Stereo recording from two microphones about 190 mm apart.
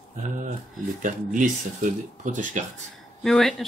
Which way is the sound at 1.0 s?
45° right (ahead or behind).